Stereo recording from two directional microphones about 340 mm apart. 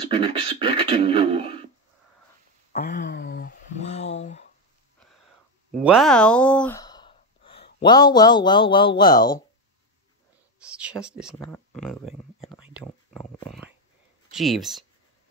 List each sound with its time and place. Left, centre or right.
0.1 s beatboxing: centre
2.7 s a sound: left
5.7 s sigh: centre
10.6 s speech: centre